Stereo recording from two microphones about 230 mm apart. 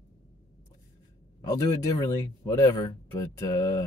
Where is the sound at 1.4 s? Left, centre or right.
Centre.